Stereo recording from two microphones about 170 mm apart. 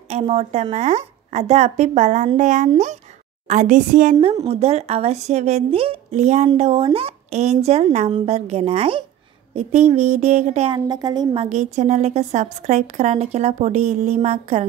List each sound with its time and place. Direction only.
0.1 s a woman's voice: 40° right (ahead or behind)
4.5 s a woman's voice: 35° right (ahead or behind)
10.7 s a woman's voice: 25° right (ahead or behind)
11.4 s a woman's voice: 45° right (ahead or behind)